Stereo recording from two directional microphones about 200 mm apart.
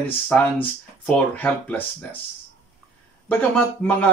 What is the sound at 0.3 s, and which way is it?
Speech, 5° left (ahead or behind).